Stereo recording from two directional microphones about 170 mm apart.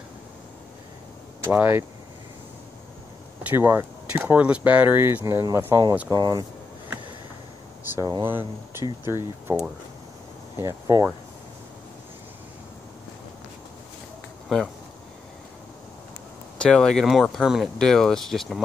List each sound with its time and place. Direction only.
1.4 s speech: 10° right (ahead or behind)
3.4 s speech: 10° right (ahead or behind)
7.8 s speech: 15° right (ahead or behind)
8.8 s speech: 25° left (ahead or behind)
10.5 s speech: 20° right (ahead or behind)
16.5 s speech: 5° left (ahead or behind)